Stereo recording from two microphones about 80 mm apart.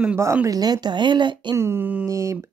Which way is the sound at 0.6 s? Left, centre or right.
Right.